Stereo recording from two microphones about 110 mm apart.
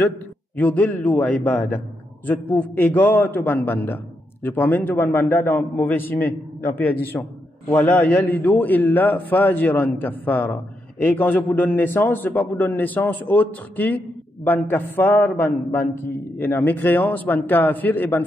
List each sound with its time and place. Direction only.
0.6 s a man's voice: 15° left (ahead or behind)